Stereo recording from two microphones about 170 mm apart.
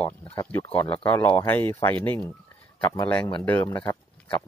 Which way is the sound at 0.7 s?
10° left (ahead or behind).